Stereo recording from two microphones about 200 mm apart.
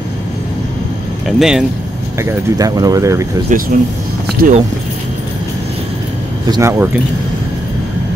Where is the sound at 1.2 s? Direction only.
Centre (ahead or behind).